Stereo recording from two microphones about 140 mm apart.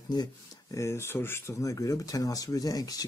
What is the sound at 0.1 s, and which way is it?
Speech, 25° left (ahead or behind).